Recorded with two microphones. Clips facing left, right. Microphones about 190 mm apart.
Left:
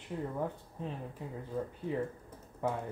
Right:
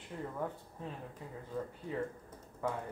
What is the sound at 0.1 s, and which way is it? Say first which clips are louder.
Speech: left 4 dB; 15° left (ahead or behind).